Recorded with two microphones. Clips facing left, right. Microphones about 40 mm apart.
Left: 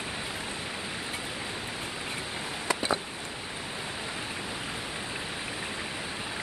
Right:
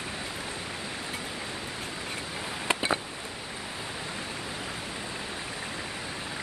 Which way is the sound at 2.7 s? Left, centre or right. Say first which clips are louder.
Right 1 dB; right.